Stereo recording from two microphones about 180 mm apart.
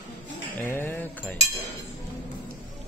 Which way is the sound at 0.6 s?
10° left (ahead or behind).